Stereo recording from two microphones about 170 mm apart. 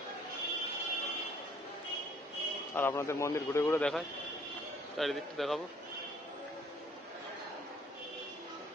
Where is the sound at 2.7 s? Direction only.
15° left (ahead or behind).